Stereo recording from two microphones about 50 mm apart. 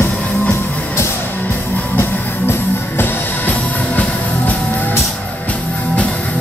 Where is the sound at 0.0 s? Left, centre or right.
Left.